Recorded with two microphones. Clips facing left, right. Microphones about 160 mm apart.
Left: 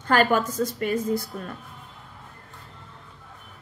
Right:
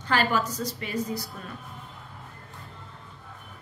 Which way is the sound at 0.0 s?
50° left (ahead or behind).